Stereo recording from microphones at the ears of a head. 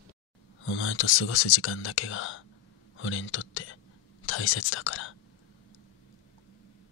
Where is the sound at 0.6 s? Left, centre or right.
Left.